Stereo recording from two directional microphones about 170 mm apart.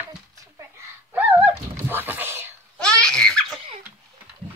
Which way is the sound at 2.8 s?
5° left (ahead or behind).